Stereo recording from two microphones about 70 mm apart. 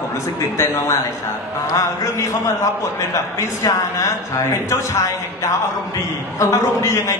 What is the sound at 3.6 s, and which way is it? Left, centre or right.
Speech, left.